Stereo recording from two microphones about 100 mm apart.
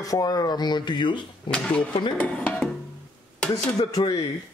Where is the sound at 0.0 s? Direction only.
40° left (ahead or behind); by 1.6 s 55° left (ahead or behind).